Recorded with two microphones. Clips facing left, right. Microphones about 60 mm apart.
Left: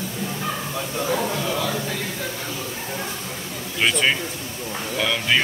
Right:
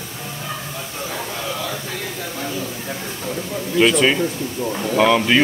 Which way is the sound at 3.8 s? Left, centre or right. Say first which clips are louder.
Right 5 dB; centre.